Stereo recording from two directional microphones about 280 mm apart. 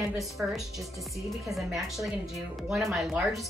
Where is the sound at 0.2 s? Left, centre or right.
Centre.